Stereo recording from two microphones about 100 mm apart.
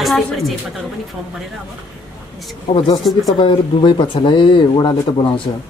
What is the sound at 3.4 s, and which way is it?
Speech, 50° left (ahead or behind).